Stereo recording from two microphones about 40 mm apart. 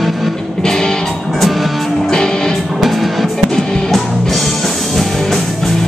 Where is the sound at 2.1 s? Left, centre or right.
Centre.